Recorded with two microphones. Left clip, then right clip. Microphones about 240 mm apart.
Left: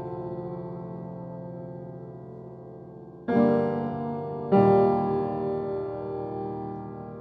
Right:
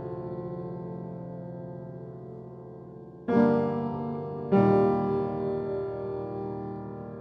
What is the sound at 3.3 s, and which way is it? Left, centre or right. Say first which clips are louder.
Music: left 1 dB; left.